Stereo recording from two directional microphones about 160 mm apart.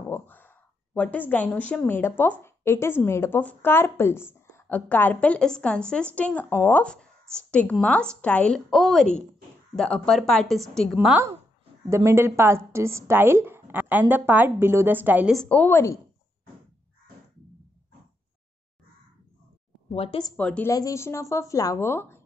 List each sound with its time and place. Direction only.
0.1 s a sound: 15° left (ahead or behind)
0.9 s a woman's voice: 10° left (ahead or behind)
11.9 s a woman's voice: 15° right (ahead or behind)
15.3 s speech: 5° left (ahead or behind)
19.9 s speech: 35° left (ahead or behind)
20.3 s speech: 10° left (ahead or behind)
20.7 s a woman's voice: 20° left (ahead or behind)